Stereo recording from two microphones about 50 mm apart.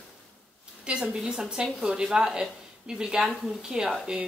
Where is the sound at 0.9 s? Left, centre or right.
Centre.